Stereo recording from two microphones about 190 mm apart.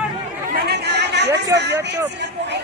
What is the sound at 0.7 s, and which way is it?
Chatter, 60° right (ahead or behind).